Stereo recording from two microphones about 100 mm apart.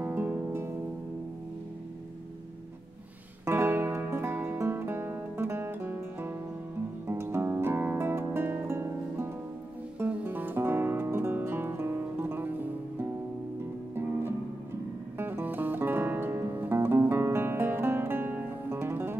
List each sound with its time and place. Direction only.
0.0 s music: 15° right (ahead or behind)
3.4 s music: 25° right (ahead or behind)
15.1 s music: 20° right (ahead or behind)